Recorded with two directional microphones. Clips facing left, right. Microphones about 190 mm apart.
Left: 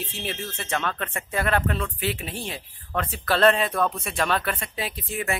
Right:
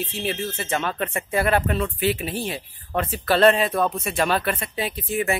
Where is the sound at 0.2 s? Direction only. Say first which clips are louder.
Right 6 dB; 5° right (ahead or behind).